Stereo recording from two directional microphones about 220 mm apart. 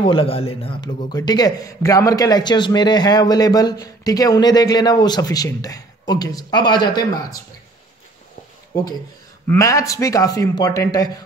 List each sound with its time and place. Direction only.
0.0 s a man's voice: 25° left (ahead or behind)
9.5 s a man's voice: 15° left (ahead or behind)